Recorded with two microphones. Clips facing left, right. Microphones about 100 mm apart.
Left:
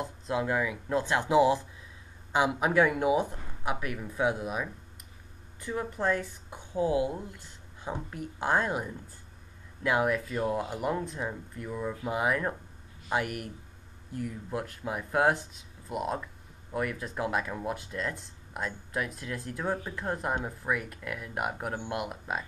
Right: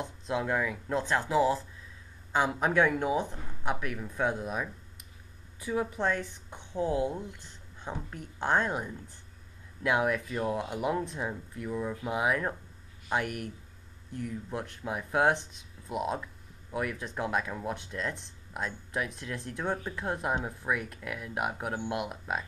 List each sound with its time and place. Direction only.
0.0 s speech: centre (ahead or behind)
1.3 s speech: 15° left (ahead or behind)
5.6 s speech: 5° right (ahead or behind)